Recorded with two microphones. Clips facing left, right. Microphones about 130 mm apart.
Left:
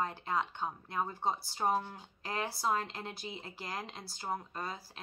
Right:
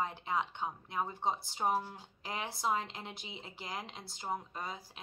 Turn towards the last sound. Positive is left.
turn(degrees=-20)  # may be behind; listen again after turning